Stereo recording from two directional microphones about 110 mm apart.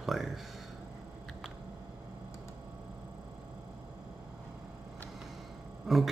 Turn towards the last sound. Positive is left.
turn(degrees=-5)  # may be behind; listen again after turning